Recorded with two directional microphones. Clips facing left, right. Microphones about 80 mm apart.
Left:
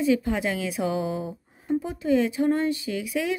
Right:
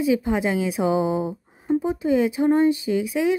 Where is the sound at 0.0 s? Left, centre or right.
Centre.